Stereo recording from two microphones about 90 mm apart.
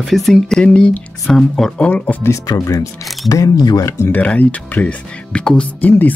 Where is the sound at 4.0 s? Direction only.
20° left (ahead or behind).